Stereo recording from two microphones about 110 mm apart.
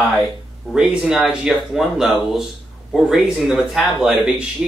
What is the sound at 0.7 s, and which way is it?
Speech, 5° right (ahead or behind).